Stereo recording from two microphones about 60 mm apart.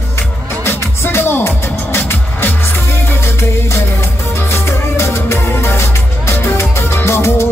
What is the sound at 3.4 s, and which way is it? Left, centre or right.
Music, left.